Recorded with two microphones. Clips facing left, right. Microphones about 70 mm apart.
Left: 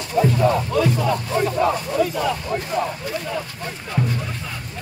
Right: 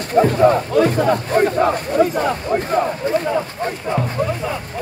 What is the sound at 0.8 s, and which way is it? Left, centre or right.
Speech, right.